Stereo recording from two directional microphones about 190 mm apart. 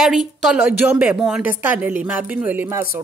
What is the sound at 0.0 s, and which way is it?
A woman's voice, centre (ahead or behind).